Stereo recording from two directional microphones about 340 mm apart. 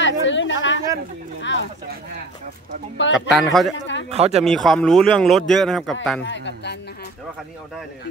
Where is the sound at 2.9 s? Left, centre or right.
Left.